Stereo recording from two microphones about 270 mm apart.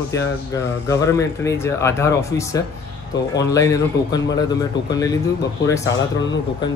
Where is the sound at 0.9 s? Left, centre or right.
Centre.